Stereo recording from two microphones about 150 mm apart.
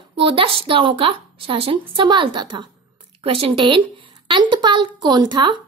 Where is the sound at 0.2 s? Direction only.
35° right (ahead or behind).